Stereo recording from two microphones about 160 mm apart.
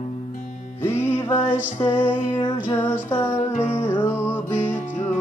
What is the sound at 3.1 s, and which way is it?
Music, 15° left (ahead or behind).